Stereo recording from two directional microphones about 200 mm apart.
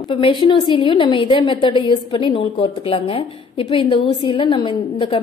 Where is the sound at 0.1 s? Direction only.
25° left (ahead or behind).